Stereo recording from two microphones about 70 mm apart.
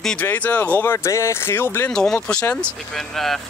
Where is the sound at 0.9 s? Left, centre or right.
Left.